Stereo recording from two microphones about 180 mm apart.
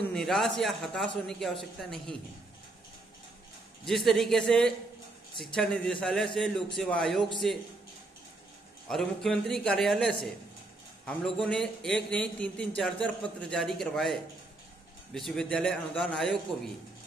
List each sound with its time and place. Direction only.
0.1 s a man's voice: centre (ahead or behind)
3.8 s a man's voice: centre (ahead or behind)
8.8 s a man's voice: centre (ahead or behind)